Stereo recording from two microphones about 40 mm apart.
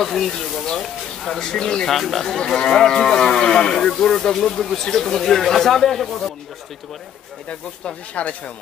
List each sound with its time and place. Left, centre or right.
0.0 s speech: centre
1.9 s speech: centre
7.4 s speech: left